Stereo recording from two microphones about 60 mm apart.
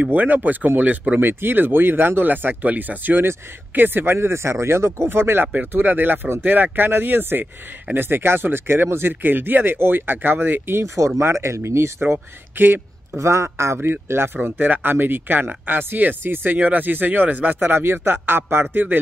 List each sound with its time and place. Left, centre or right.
0.0 s speech: right
11.1 s speech: right
13.2 s speech: right
13.7 s speech: right